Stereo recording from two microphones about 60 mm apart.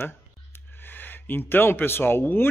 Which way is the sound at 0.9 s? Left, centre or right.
Left.